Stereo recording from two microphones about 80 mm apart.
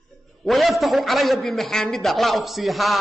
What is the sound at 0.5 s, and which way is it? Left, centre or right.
A man's voice, centre.